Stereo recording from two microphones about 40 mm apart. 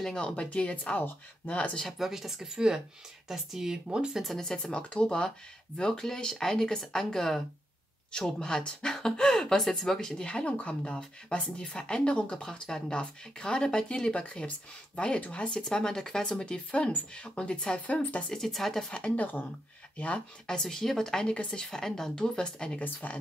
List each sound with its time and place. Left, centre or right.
0.2 s speech: left
0.9 s speech: left
1.9 s speech: centre
4.6 s speech: left
15.7 s speech: centre
17.8 s speech: left
18.3 s speech: centre
18.9 s speech: left
19.1 s speech: left
20.4 s speech: centre
22.8 s speech: left